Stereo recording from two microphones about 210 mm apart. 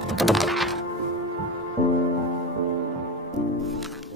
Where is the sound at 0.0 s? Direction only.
Centre (ahead or behind).